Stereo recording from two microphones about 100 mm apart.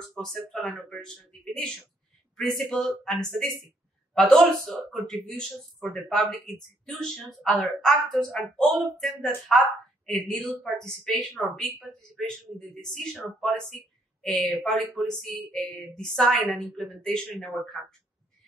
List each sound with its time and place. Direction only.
0.1 s speech: 5° left (ahead or behind)